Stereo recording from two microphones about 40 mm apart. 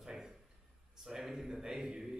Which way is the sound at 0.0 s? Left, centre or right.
Centre.